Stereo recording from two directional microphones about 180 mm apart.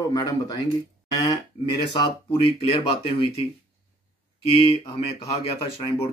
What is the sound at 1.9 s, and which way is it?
Speech, 25° left (ahead or behind).